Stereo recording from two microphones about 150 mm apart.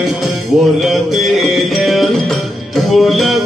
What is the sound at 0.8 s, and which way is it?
Music, centre (ahead or behind).